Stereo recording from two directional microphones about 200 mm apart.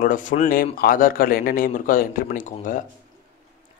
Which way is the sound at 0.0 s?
40° left (ahead or behind).